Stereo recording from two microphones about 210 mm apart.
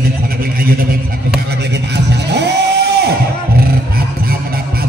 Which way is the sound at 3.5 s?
45° right (ahead or behind).